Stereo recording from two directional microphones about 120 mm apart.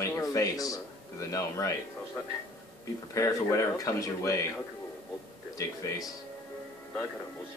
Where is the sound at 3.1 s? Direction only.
25° left (ahead or behind).